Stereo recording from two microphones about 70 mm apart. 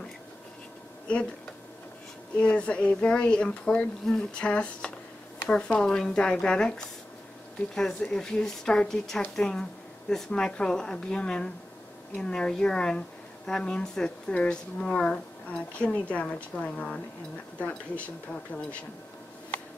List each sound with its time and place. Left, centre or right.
2.3 s speech: centre